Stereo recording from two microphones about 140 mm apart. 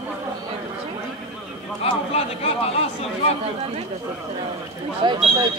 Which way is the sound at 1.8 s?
45° left (ahead or behind).